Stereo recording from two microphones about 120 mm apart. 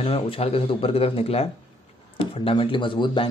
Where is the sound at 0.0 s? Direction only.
55° left (ahead or behind).